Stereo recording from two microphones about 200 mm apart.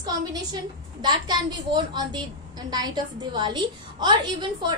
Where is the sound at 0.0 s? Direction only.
20° right (ahead or behind).